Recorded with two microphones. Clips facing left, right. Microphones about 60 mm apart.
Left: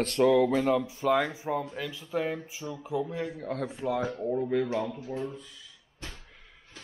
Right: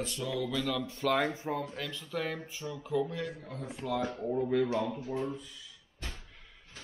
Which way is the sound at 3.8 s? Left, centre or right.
Centre.